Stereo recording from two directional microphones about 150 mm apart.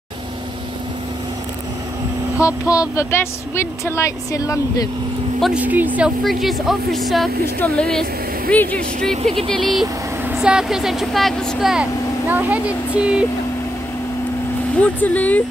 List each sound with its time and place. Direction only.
2.4 s speech: 25° left (ahead or behind)
5.4 s speech: 10° right (ahead or behind)
12.3 s speech: 10° right (ahead or behind)
14.8 s speech: 10° left (ahead or behind)